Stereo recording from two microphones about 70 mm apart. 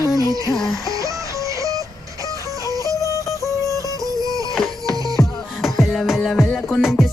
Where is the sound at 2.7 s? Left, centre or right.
Right.